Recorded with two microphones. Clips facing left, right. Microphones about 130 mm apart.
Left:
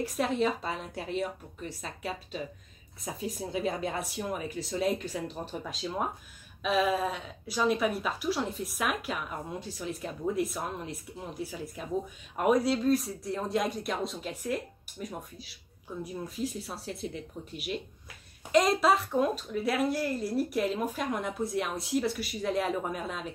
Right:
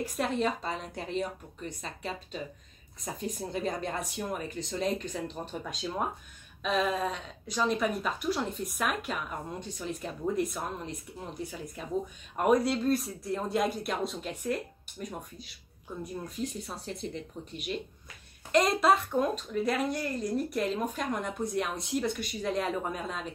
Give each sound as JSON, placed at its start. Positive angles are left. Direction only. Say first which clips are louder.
{"t": 0.0, "sound": "a woman's voice", "louder": "left 1 dB", "side_deg": 0}